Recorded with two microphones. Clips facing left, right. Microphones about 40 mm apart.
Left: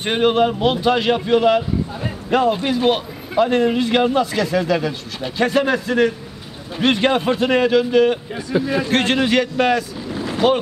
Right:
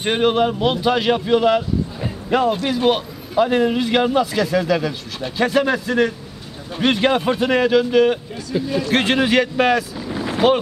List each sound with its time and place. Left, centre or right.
0.0 s a man's voice: centre
2.6 s a man's voice: centre
8.5 s a man's voice: left
8.9 s a man's voice: centre
10.1 s a sound: right